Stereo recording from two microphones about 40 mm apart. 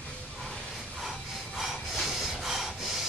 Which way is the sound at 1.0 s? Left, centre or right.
Centre.